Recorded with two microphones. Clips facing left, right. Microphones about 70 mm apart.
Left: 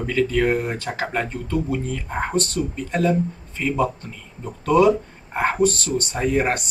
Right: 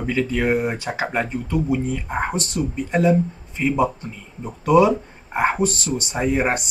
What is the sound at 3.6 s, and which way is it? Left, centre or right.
Speech, centre.